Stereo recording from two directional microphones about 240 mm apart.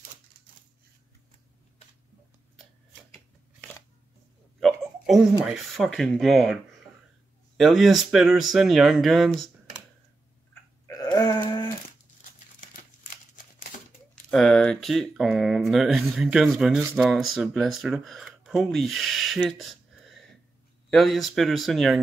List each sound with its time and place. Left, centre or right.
4.6 s hiccup: centre
5.4 s speech: centre
10.5 s a sound: centre
12.5 s crumpling: left
14.3 s speech: centre